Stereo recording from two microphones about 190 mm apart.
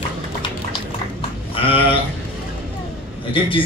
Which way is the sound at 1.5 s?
30° left (ahead or behind).